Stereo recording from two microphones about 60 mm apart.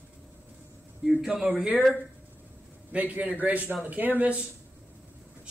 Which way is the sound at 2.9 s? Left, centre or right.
Right.